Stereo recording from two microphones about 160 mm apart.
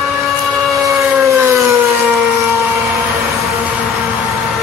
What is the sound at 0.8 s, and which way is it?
Civil defense siren, 20° right (ahead or behind).